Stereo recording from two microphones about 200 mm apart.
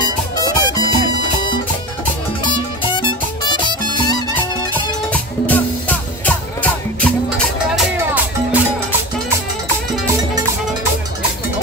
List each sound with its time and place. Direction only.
0.0 s music: 20° left (ahead or behind)
2.4 s music: 20° left (ahead or behind)
5.1 s music: 10° left (ahead or behind)
7.7 s music: 5° right (ahead or behind)